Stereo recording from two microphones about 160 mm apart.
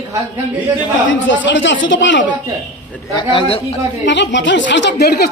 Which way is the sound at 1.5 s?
90° left.